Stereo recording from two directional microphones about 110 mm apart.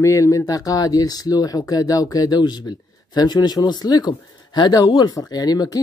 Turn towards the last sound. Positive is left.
turn(degrees=35)  # may be behind; listen again after turning